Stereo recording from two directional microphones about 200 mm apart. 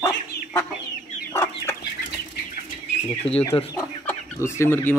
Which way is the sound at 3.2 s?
30° left (ahead or behind).